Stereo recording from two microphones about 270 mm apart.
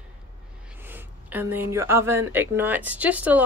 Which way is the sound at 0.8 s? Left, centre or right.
Centre.